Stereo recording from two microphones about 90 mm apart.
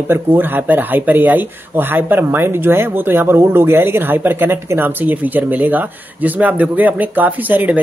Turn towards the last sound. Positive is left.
turn(degrees=-20)  # may be behind; listen again after turning